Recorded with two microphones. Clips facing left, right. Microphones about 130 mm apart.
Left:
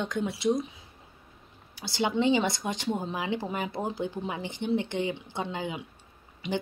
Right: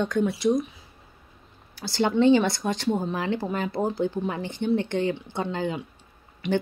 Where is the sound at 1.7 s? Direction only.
15° left (ahead or behind).